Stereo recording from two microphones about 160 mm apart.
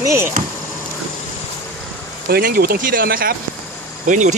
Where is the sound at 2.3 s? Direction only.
70° right (ahead or behind).